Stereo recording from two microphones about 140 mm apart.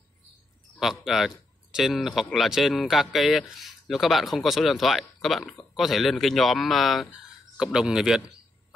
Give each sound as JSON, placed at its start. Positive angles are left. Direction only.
{"t": 0.7, "sound": "speech", "side_deg": 0}